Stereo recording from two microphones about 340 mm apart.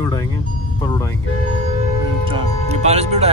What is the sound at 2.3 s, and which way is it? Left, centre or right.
Speech, centre.